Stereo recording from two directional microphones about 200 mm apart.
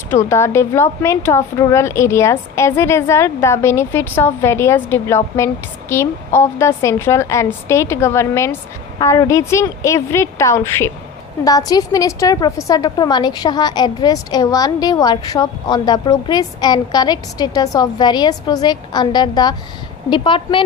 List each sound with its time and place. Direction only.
0.1 s a woman's voice: 15° left (ahead or behind)